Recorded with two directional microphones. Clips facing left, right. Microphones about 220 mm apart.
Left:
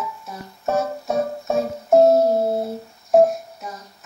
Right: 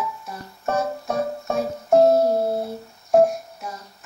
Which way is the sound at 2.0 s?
20° left (ahead or behind).